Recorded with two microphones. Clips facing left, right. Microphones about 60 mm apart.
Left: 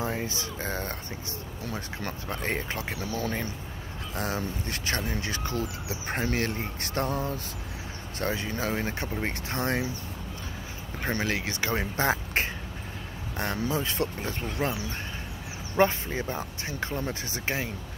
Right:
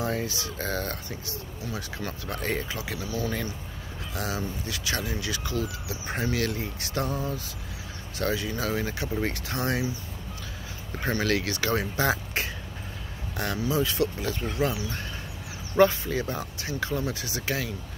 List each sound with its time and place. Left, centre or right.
0.0 s speech: left
1.6 s speech: left
2.3 s speech: left
2.7 s speech: left
4.1 s speech: left
8.2 s speech: left
11.1 s speech: left
13.6 s speech: left